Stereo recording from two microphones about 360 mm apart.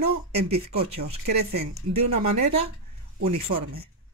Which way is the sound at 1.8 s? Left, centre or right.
Right.